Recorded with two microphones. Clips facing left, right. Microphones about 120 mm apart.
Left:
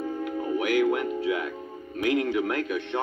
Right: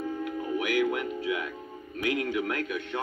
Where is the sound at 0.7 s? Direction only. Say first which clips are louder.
Left 4 dB; centre (ahead or behind).